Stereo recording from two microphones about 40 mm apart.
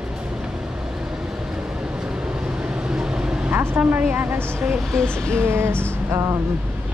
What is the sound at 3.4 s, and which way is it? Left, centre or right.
Vehicle, right.